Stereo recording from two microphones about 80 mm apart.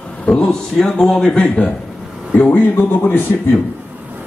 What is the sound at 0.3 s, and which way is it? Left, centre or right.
A man's voice, centre.